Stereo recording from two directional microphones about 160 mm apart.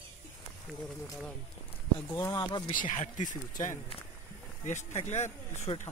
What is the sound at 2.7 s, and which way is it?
Speech, 50° left (ahead or behind).